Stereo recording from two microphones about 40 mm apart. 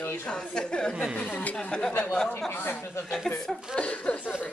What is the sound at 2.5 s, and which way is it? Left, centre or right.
Speech, left.